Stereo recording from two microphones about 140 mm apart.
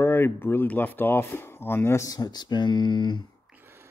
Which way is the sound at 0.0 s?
15° left (ahead or behind).